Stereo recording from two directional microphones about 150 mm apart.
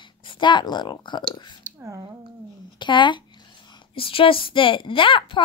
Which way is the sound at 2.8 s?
30° left (ahead or behind).